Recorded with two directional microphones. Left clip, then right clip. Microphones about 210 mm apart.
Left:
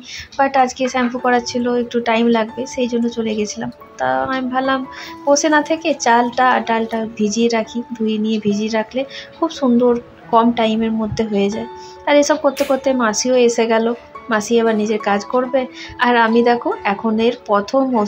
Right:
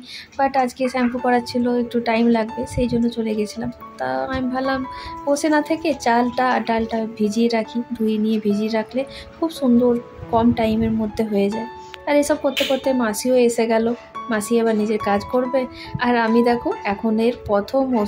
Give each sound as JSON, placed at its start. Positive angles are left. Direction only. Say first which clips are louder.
{"t": 0.4, "sound": "speech", "louder": "left 4 dB", "side_deg": 0}